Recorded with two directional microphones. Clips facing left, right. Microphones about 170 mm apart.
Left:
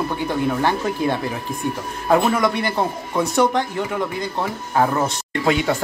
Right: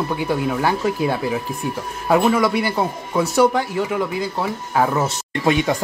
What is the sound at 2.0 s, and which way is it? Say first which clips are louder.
A man's voice: right 1 dB; 5° right (ahead or behind).